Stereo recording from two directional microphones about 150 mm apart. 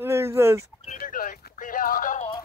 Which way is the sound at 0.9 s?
65° left (ahead or behind).